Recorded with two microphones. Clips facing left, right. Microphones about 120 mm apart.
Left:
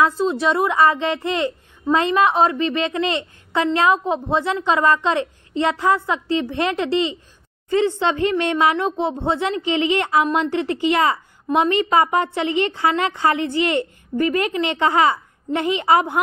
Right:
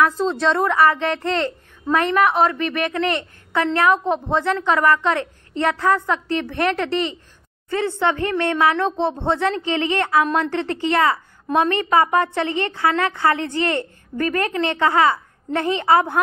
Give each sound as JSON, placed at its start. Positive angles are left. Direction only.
{"t": 0.0, "sound": "a woman's voice", "side_deg": 10}